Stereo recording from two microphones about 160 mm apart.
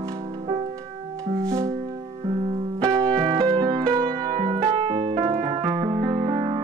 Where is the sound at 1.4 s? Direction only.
20° right (ahead or behind).